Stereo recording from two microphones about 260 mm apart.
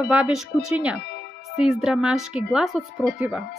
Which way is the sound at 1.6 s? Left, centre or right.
Centre.